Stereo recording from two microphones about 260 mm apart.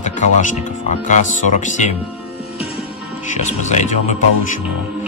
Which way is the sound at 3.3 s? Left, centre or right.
Left.